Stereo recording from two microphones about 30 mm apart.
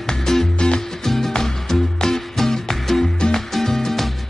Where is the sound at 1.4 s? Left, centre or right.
Centre.